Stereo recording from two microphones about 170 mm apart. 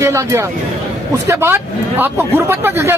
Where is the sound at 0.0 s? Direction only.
15° right (ahead or behind).